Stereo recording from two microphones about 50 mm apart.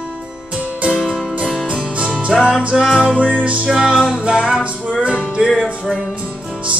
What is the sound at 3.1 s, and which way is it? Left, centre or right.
Music, right.